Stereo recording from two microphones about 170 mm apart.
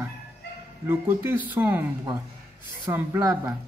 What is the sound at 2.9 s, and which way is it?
Speech, 15° right (ahead or behind).